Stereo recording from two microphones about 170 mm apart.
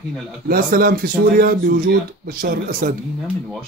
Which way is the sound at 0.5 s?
60° right (ahead or behind).